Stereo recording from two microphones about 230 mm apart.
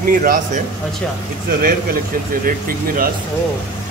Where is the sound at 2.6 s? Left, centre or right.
Right.